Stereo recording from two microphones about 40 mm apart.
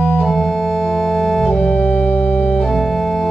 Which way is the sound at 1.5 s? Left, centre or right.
Left.